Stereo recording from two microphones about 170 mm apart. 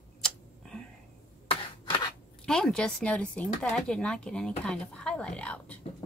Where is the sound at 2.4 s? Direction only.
5° left (ahead or behind).